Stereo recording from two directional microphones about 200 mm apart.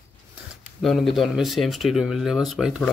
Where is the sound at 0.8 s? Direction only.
Centre (ahead or behind).